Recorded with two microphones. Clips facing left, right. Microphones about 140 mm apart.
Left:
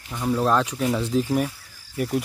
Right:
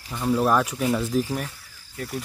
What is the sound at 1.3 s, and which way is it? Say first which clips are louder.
Cricket: left 7 dB; 15° left (ahead or behind).